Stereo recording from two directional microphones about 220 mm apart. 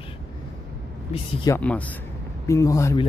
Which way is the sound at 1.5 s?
5° left (ahead or behind).